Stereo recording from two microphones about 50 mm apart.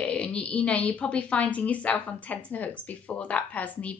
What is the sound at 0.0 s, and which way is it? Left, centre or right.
A woman's voice, left.